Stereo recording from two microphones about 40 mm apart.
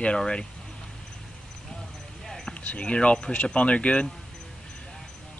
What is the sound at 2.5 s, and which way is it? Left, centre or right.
Speech, left.